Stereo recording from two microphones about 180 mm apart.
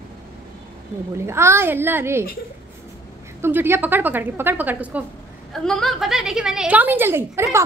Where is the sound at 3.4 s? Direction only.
15° right (ahead or behind).